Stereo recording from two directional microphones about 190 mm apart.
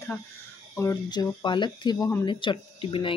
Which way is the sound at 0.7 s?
20° left (ahead or behind).